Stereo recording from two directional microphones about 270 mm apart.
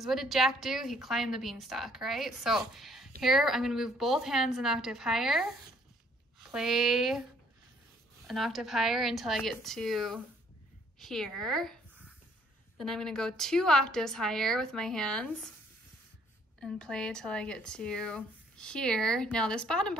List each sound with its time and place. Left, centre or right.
0.0 s speech: centre
8.3 s speech: centre
12.7 s speech: centre
16.5 s speech: centre